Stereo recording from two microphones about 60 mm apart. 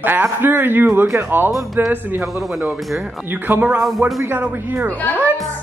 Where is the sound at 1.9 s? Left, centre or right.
Right.